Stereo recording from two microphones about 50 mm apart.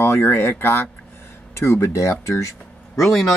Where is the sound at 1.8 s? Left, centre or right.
Left.